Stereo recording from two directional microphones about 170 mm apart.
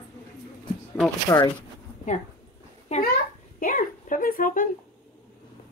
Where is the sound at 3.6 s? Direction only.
50° left (ahead or behind).